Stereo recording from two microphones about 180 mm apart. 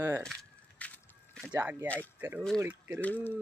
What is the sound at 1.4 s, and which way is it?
A man's voice, 10° right (ahead or behind).